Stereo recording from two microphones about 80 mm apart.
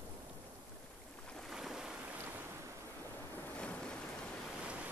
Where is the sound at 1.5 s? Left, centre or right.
Centre.